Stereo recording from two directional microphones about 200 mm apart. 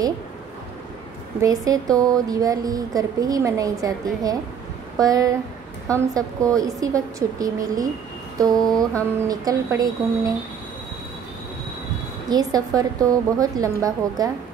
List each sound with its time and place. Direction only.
1.4 s a woman's voice: 15° right (ahead or behind)
12.3 s a woman's voice: 20° right (ahead or behind)